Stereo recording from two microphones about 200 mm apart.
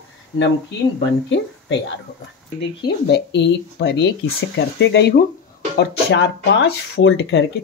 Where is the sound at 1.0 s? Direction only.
65° left (ahead or behind).